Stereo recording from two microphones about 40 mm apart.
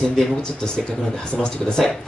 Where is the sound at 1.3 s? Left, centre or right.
Left.